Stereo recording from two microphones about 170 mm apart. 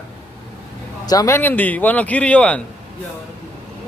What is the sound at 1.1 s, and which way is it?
Speech, 20° left (ahead or behind).